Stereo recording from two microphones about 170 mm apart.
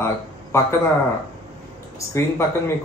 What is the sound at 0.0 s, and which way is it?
Speech, 15° left (ahead or behind).